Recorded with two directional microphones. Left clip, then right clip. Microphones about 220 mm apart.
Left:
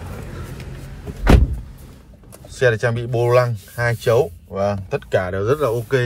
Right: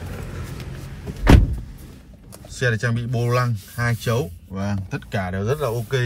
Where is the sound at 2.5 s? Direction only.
10° right (ahead or behind).